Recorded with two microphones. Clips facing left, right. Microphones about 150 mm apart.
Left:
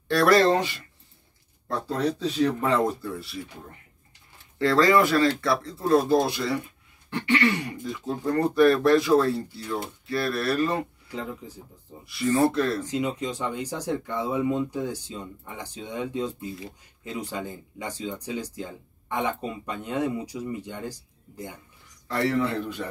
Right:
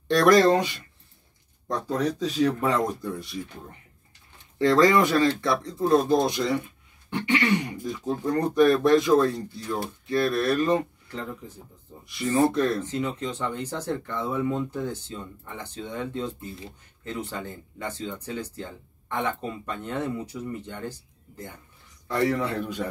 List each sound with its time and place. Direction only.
0.1 s speech: 20° right (ahead or behind)
1.9 s speech: 10° right (ahead or behind)
4.6 s speech: 20° right (ahead or behind)
11.1 s speech: 10° left (ahead or behind)
12.1 s speech: 20° right (ahead or behind)
12.8 s speech: 10° left (ahead or behind)
22.0 s speech: 15° right (ahead or behind)